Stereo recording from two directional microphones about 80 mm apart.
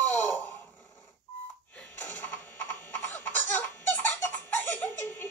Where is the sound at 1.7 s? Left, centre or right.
Centre.